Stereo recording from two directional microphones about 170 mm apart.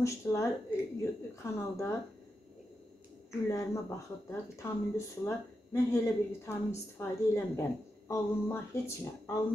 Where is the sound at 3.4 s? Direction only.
15° left (ahead or behind).